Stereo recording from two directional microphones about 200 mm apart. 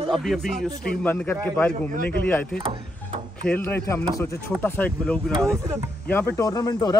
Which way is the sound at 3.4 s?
5° left (ahead or behind).